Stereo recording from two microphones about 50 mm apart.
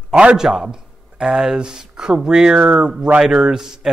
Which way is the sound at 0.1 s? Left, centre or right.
Right.